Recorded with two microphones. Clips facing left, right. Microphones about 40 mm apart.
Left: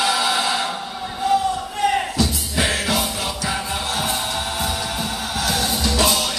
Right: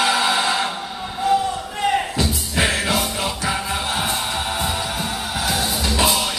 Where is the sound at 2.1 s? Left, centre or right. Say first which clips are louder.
Even; right.